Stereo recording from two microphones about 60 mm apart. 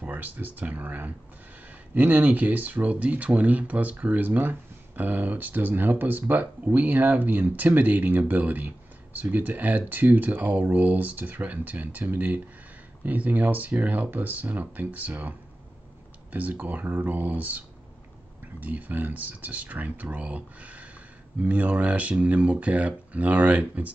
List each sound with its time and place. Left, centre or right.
0.0 s speech: right